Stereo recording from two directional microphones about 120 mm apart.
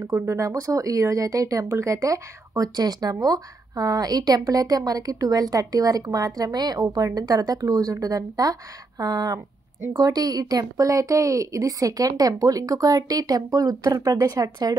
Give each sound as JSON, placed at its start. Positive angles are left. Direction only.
{"t": 0.0, "sound": "speech", "side_deg": -20}